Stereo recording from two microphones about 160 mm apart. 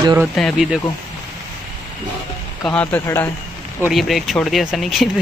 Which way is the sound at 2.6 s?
10° left (ahead or behind).